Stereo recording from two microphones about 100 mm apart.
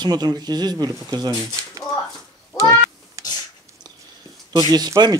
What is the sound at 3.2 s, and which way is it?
Sneeze, 35° right (ahead or behind).